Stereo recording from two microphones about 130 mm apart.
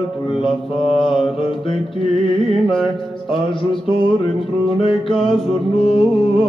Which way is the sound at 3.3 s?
40° left (ahead or behind).